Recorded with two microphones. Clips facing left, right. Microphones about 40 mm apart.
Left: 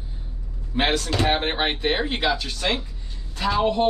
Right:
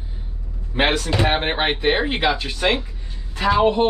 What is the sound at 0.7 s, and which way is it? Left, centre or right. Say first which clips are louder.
A woman's voice: right 3 dB; centre.